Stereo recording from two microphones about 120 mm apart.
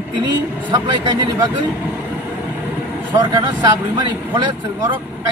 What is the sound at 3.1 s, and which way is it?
Speech, 35° right (ahead or behind).